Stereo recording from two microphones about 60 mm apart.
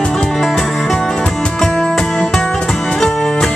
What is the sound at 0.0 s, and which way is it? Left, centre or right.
Music, centre.